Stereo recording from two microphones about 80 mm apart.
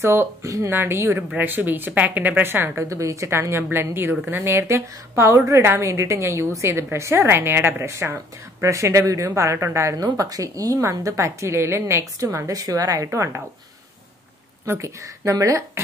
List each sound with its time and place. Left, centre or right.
0.0 s a woman's voice: right
0.7 s a woman's voice: right
2.8 s a woman's voice: right
14.7 s a woman's voice: right